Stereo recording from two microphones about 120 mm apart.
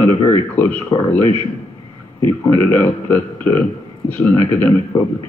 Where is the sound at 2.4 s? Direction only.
25° left (ahead or behind).